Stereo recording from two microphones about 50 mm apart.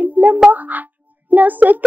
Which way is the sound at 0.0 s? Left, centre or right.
Right.